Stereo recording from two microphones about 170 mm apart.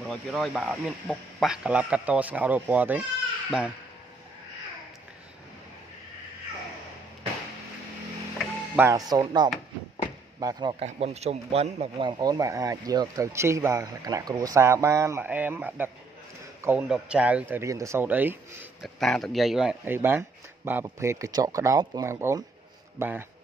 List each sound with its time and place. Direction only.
0.0 s speech: centre (ahead or behind)
8.7 s speech: 20° right (ahead or behind)
10.9 s speech: 40° right (ahead or behind); by 18.4 s 10° right (ahead or behind)
18.8 s speech: centre (ahead or behind)